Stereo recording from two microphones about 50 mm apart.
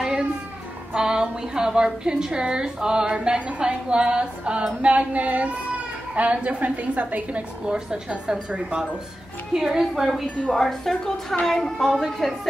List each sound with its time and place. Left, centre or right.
0.9 s a woman's voice: centre; by 7.4 s right
7.6 s a woman's voice: centre
9.5 s a woman's voice: centre
10.5 s a woman's voice: centre